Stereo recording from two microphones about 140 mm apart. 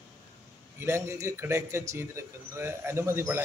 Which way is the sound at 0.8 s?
20° right (ahead or behind).